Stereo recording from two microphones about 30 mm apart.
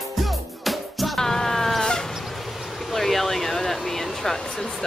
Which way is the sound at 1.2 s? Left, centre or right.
Centre.